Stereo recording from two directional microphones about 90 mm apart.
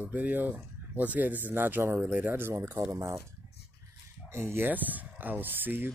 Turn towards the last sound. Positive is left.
turn(degrees=-20)  # may be behind; listen again after turning